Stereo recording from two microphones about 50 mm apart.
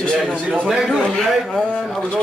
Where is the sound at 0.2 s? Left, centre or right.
Centre.